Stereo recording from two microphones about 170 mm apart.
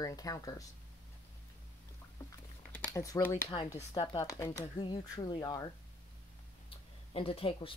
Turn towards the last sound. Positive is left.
turn(degrees=35)  # may be behind; listen again after turning